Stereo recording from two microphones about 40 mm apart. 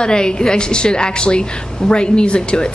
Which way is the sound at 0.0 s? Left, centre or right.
Left.